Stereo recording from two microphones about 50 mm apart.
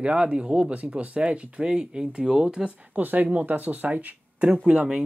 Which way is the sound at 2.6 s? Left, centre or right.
Right.